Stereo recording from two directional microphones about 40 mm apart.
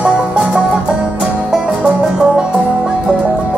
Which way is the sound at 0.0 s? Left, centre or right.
Right.